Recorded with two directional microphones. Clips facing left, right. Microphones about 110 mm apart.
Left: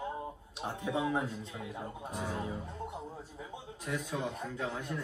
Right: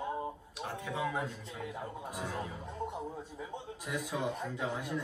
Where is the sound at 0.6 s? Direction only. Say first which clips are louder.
Left 3 dB; 25° left (ahead or behind).